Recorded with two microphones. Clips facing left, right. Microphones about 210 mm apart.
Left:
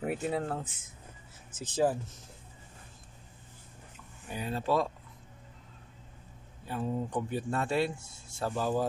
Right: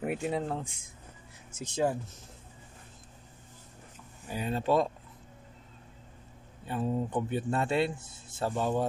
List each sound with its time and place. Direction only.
0.0 s speech: centre (ahead or behind)
4.5 s speech: 25° right (ahead or behind)
6.7 s speech: 5° right (ahead or behind)